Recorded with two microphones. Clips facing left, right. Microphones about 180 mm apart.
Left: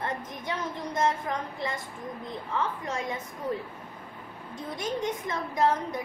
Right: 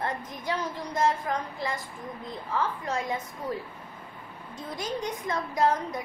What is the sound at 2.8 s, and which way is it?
Speech, 20° left (ahead or behind).